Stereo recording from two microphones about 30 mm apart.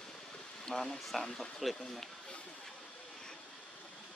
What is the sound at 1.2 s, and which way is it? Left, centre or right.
Speech, left.